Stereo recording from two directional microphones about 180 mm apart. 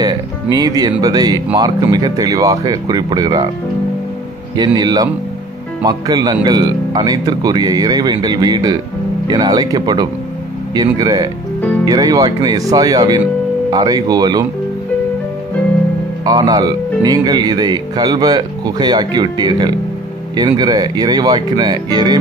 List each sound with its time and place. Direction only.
0.0 s speech: 25° right (ahead or behind)
4.6 s speech: 20° right (ahead or behind)
16.3 s speech: 20° right (ahead or behind)